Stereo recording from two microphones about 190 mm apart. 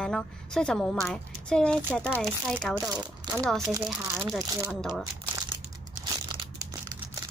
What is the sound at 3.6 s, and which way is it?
Speech, 15° right (ahead or behind).